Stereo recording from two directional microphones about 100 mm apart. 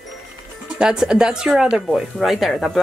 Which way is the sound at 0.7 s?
5° right (ahead or behind).